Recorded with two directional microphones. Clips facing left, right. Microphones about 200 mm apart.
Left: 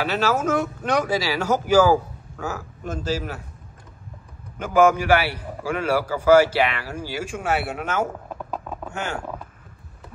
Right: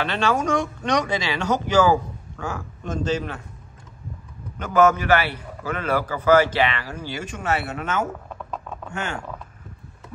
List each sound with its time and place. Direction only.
0.0 s a man's voice: 5° left (ahead or behind)
4.6 s a man's voice: 10° left (ahead or behind)